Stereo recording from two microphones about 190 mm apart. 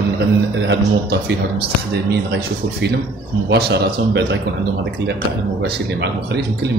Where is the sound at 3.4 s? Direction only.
60° right (ahead or behind).